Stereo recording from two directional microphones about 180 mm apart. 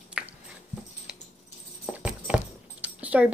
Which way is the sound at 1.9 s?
5° right (ahead or behind).